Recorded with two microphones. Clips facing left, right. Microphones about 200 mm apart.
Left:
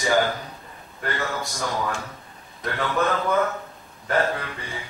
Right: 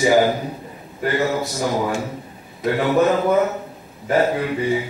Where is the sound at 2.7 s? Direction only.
20° right (ahead or behind).